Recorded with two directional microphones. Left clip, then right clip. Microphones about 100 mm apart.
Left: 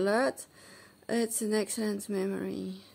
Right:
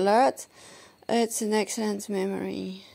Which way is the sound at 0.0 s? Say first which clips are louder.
Right 7 dB; 30° right (ahead or behind).